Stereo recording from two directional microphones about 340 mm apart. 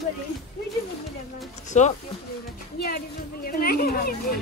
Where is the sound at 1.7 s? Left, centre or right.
Left.